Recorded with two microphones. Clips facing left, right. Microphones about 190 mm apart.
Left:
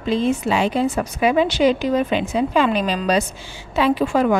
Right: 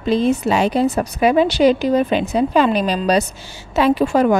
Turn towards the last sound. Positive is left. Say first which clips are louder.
# right 3 dB
turn(degrees=-40)  # may be behind; listen again after turning